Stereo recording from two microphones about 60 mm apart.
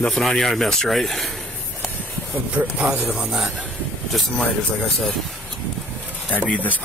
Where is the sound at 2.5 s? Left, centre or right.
Right.